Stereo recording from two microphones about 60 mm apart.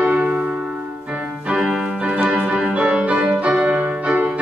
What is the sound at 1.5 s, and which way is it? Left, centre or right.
Keyboard, centre.